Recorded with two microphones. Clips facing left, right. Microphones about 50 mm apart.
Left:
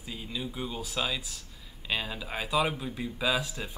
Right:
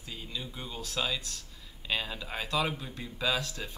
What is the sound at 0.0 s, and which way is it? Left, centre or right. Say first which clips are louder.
Speech: left 4 dB; centre.